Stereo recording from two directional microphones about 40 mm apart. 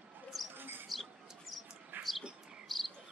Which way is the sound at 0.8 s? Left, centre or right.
Centre.